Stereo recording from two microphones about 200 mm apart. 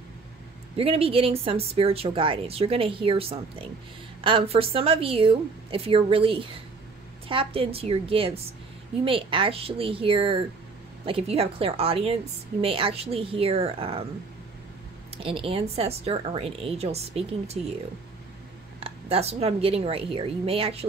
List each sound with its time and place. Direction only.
0.7 s speech: 30° right (ahead or behind)
15.2 s speech: 25° right (ahead or behind)
18.9 s speech: 30° right (ahead or behind)